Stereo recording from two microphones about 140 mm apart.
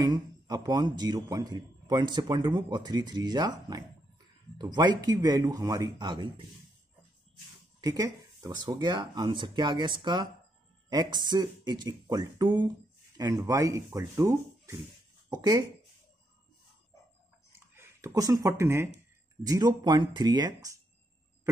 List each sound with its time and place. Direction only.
0.0 s speech: 30° right (ahead or behind)
7.8 s speech: 25° right (ahead or behind)
17.7 s speech: 20° right (ahead or behind)